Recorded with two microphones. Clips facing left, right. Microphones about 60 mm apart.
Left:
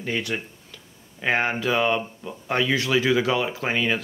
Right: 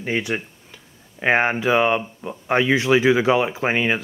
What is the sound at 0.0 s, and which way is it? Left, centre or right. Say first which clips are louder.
Speech: right 3 dB; right.